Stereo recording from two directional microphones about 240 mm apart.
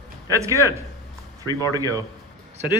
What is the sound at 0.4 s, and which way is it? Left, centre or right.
Speech, centre.